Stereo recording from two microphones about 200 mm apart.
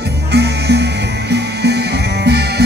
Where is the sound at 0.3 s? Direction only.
55° right (ahead or behind).